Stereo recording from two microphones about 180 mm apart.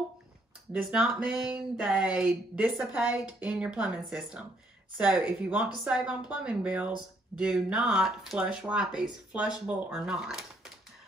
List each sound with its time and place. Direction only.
0.8 s a woman's voice: 5° right (ahead or behind)